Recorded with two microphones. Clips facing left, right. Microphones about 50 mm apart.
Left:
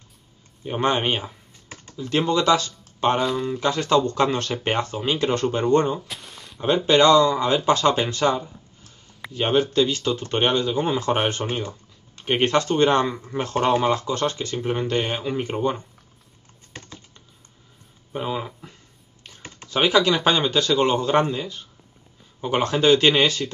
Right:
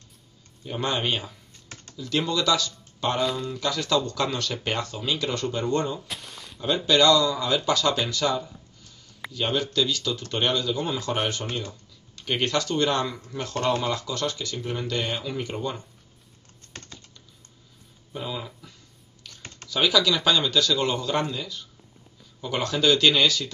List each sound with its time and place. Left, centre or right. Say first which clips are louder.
0.7 s speech: left 5 dB; left
6.0 s a sound: even; centre
6.9 s speech: left 4 dB; left
18.1 s speech: left 6 dB; left
19.2 s typing: left 1 dB; left
19.7 s speech: left 3 dB; left